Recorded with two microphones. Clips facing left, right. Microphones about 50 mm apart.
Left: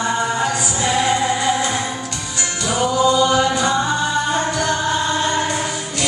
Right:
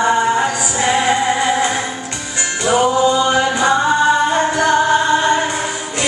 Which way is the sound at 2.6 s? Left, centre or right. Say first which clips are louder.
Right 3 dB; right.